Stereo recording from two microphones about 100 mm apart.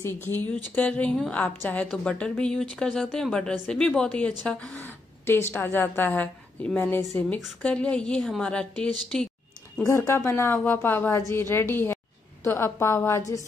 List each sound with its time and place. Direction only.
0.0 s a woman's voice: 20° left (ahead or behind)
9.8 s a woman's voice: 30° left (ahead or behind)
11.1 s a woman's voice: 30° left (ahead or behind)
12.4 s a woman's voice: 30° left (ahead or behind)